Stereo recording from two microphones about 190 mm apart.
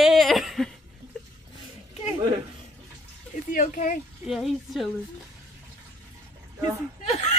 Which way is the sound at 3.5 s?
45° left (ahead or behind).